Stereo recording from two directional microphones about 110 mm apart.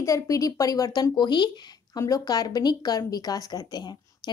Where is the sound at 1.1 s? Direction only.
45° left (ahead or behind).